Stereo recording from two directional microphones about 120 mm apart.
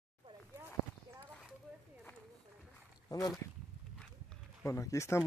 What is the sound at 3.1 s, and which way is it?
Speech, 30° left (ahead or behind).